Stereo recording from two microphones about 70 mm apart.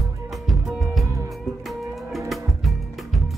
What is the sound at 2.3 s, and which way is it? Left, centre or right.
Music, centre.